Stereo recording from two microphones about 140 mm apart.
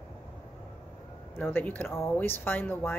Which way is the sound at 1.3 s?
10° left (ahead or behind).